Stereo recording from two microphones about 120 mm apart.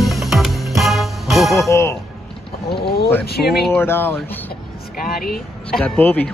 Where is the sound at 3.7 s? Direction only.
20° left (ahead or behind).